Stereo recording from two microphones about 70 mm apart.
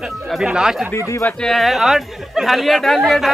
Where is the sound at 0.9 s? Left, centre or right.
Left.